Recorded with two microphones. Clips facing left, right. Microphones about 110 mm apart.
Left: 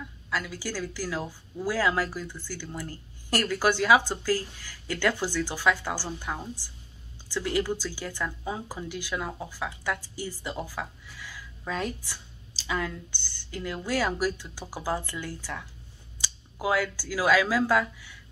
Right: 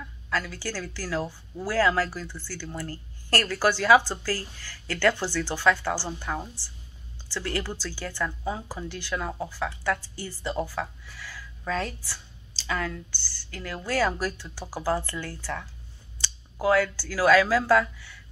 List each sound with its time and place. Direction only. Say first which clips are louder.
0.3 s speech: right 2 dB; 10° left (ahead or behind)
16.6 s speech: right 4 dB; 15° left (ahead or behind)